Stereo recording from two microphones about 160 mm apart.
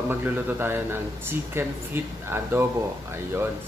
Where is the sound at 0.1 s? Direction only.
10° right (ahead or behind).